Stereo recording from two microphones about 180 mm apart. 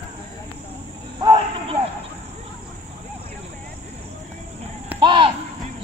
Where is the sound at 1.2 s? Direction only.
25° right (ahead or behind).